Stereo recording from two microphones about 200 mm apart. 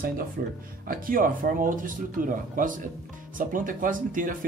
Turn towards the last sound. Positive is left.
turn(degrees=-40)  # may be behind; listen again after turning